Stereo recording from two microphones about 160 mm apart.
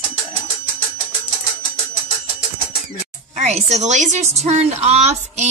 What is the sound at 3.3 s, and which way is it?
A woman's voice, 45° right (ahead or behind).